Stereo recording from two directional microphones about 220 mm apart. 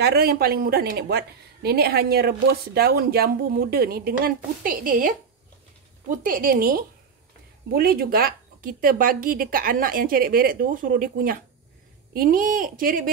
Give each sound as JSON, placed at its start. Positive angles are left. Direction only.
{"t": 0.0, "sound": "a woman's voice", "side_deg": -45}